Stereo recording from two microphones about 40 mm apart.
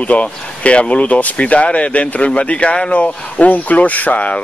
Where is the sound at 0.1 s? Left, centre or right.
Left.